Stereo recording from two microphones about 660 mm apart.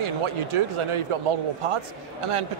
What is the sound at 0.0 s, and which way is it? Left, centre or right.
A man's voice, right.